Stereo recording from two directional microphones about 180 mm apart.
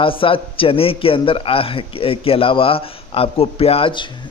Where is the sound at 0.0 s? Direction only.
30° left (ahead or behind).